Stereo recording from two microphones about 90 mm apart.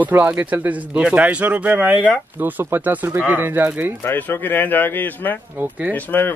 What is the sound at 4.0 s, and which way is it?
Speech, 25° left (ahead or behind).